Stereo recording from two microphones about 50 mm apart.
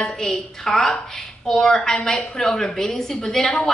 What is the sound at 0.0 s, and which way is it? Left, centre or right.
A woman's voice, centre.